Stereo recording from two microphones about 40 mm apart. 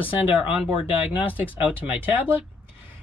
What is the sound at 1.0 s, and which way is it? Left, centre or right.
Speech, right.